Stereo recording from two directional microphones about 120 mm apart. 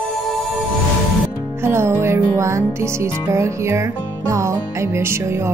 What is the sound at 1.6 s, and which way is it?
Music, 20° right (ahead or behind).